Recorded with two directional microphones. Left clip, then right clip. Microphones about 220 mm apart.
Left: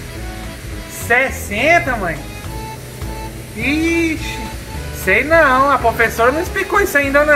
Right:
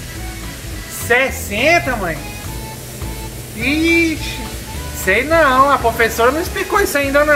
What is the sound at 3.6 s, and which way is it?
A woman's voice, 5° right (ahead or behind).